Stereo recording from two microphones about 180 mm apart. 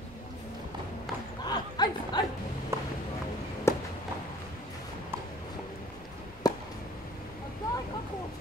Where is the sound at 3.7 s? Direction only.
15° left (ahead or behind).